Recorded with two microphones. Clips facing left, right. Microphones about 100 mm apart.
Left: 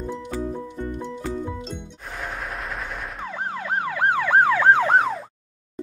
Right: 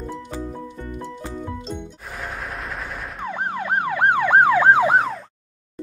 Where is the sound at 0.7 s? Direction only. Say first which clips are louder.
Left 2 dB; 20° left (ahead or behind).